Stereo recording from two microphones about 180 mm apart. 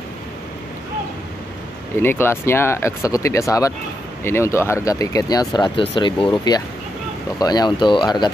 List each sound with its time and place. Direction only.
2.0 s speech: 15° left (ahead or behind)